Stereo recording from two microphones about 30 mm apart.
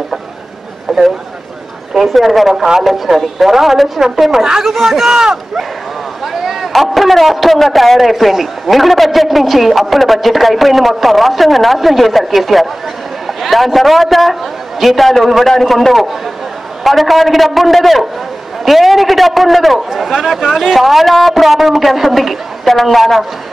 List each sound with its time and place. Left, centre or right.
0.9 s a sound: centre
2.0 s speech: centre
4.3 s speech: centre
6.2 s a sound: centre
6.7 s a man's voice: centre
13.3 s a sound: centre
13.7 s a man's voice: centre
16.8 s a man's voice: centre
22.8 s a woman's voice: centre